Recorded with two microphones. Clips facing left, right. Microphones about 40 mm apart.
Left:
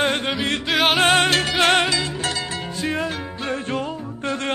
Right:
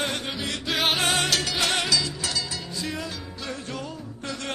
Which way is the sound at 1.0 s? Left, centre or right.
Left.